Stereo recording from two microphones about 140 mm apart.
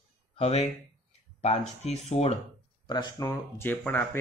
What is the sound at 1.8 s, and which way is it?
Speech, 50° left (ahead or behind).